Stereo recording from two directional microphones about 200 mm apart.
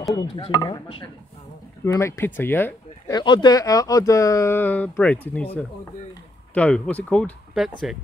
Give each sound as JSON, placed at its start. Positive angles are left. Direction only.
{"t": 0.1, "sound": "speech", "side_deg": 20}
{"t": 3.2, "sound": "speech", "side_deg": 20}
{"t": 6.5, "sound": "speech", "side_deg": 5}